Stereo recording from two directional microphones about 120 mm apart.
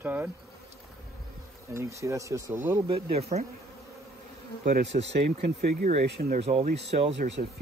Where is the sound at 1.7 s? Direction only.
25° right (ahead or behind).